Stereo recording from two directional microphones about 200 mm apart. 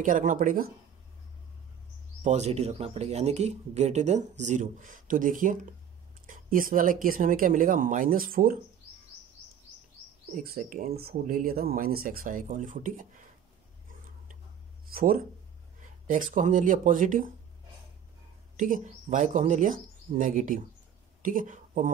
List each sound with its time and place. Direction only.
0.0 s speech: 40° right (ahead or behind)
2.2 s speech: 35° right (ahead or behind)
10.3 s speech: 45° right (ahead or behind)
14.9 s speech: 45° right (ahead or behind)
18.6 s speech: 40° right (ahead or behind)